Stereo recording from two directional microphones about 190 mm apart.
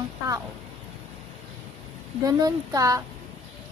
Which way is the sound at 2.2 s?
20° right (ahead or behind).